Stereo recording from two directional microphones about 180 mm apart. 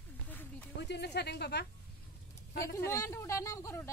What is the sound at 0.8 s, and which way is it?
Speech, 70° left (ahead or behind).